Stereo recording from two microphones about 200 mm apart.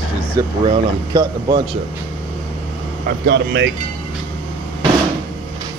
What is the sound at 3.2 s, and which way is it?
Speech, 60° right (ahead or behind).